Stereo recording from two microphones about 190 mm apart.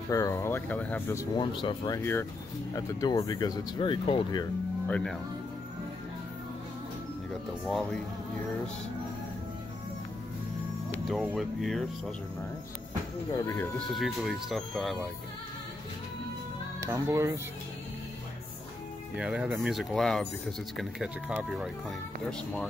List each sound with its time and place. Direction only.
0.1 s speech: 15° left (ahead or behind)
1.3 s speech: 25° left (ahead or behind)
4.8 s speech: 5° left (ahead or behind)
7.6 s speech: centre (ahead or behind)
11.1 s speech: centre (ahead or behind)
13.4 s speech: 15° left (ahead or behind)
13.7 s speech: centre (ahead or behind)
16.8 s speech: 15° right (ahead or behind)
19.1 s speech: 5° right (ahead or behind)